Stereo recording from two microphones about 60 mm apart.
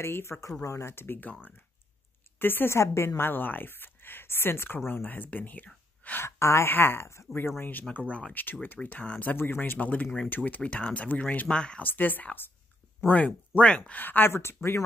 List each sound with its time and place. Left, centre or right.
0.0 s speech: left
0.4 s speech: left
2.3 s speech: left
3.2 s speech: left
6.2 s speech: left
7.9 s speech: left
9.3 s speech: left; by 11.8 s centre
11.8 s speech: left
14.0 s speech: left
14.3 s speech: left